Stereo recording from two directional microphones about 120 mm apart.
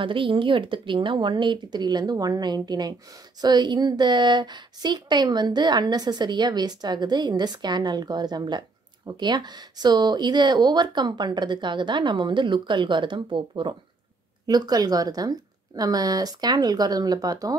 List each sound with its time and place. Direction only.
0.0 s a woman's voice: 45° right (ahead or behind)